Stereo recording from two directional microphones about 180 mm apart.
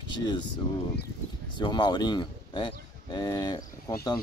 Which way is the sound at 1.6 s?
25° left (ahead or behind).